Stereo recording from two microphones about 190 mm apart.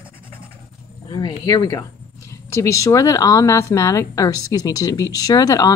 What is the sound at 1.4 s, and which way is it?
Speech, 20° left (ahead or behind).